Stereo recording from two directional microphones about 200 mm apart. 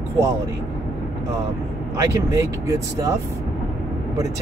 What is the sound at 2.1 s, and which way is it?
Speech, 15° right (ahead or behind).